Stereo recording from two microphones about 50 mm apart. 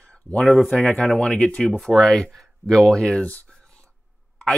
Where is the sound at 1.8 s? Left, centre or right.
Centre.